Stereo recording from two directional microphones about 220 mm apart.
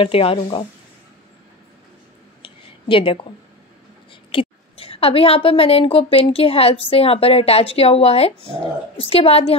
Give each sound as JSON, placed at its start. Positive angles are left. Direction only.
{"t": 0.0, "sound": "a woman's voice", "side_deg": 25}
{"t": 2.4, "sound": "a sound", "side_deg": 25}
{"t": 4.1, "sound": "a woman's voice", "side_deg": 25}